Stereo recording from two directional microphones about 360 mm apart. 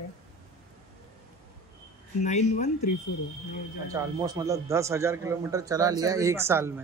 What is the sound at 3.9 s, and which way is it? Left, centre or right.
A man's voice, centre.